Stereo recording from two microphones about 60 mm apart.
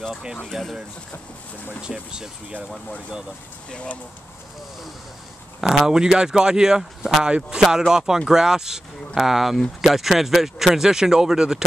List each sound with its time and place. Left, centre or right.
0.1 s speech: centre
1.8 s speech: centre
3.7 s speech: centre
5.6 s speech: centre